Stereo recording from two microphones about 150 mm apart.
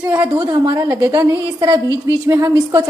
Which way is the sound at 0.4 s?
25° right (ahead or behind).